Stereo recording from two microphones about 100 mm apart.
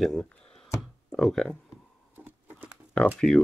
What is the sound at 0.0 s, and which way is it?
Speech, 5° left (ahead or behind).